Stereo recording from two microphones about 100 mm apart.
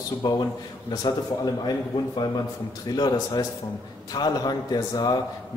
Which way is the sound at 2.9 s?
40° left (ahead or behind).